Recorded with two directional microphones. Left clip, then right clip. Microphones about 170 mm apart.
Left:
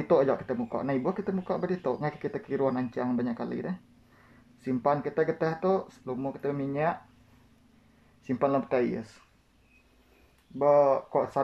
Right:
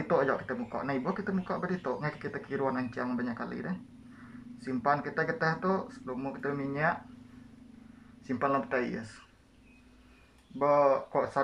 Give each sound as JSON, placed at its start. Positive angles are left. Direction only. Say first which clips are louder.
{"t": 0.1, "sound": "speech", "louder": "left 4 dB", "side_deg": 25}
{"t": 8.3, "sound": "speech", "louder": "left 3 dB", "side_deg": 25}
{"t": 10.6, "sound": "speech", "louder": "left 3 dB", "side_deg": 20}